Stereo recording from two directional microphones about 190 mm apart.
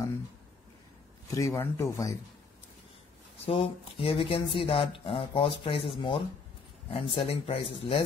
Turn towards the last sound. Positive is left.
turn(degrees=30)  # may be behind; listen again after turning